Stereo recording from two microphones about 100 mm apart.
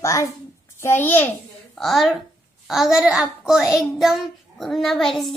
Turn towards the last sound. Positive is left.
turn(degrees=0)  # may be behind; listen again after turning